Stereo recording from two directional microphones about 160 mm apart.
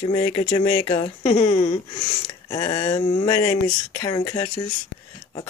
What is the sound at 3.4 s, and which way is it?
Speech, 20° left (ahead or behind).